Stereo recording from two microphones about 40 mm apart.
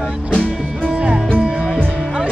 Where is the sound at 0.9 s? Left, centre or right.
Right.